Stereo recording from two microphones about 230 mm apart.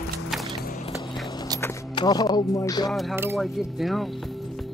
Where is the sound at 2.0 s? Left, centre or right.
Centre.